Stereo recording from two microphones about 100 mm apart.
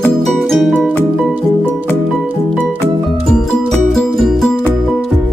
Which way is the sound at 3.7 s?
Centre (ahead or behind).